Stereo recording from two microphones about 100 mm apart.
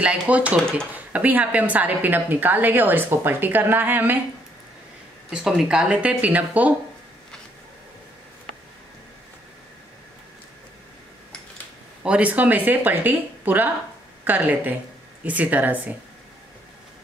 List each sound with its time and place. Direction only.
0.0 s a woman's voice: 15° right (ahead or behind)
5.3 s a woman's voice: 5° right (ahead or behind)
12.0 s a woman's voice: 10° right (ahead or behind)